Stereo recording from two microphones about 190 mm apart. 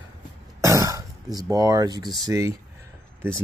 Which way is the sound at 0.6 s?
15° right (ahead or behind).